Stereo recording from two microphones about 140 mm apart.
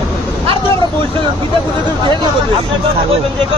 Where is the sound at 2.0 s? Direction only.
35° right (ahead or behind).